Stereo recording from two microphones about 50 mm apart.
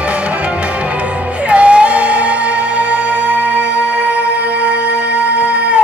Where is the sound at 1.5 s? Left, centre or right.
Right.